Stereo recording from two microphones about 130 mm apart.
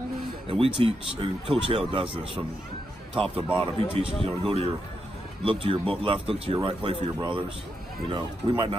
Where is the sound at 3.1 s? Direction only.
45° right (ahead or behind).